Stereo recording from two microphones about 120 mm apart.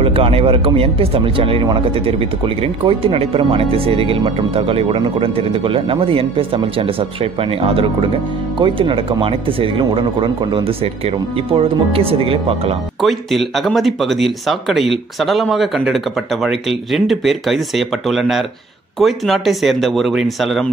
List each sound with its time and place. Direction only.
0.0 s speech: 50° right (ahead or behind)
13.0 s speech: centre (ahead or behind)